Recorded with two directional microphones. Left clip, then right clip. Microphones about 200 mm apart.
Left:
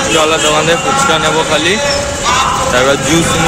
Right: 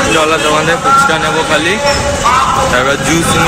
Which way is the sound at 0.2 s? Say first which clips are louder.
Even; 15° left (ahead or behind).